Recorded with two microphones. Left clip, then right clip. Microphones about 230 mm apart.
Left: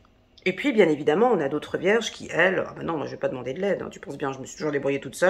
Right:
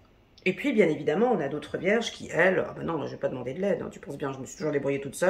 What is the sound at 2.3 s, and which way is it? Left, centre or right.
Speech, centre.